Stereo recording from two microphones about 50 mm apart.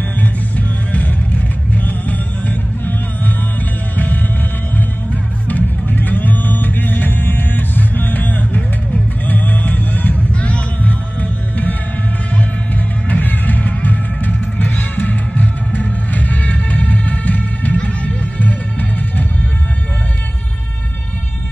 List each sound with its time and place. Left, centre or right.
0.9 s music: left
13.1 s music: left